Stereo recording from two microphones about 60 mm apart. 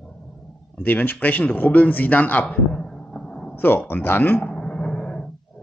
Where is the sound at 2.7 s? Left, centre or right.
Centre.